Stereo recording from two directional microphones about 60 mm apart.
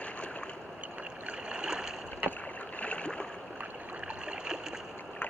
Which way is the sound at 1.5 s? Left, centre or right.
Centre.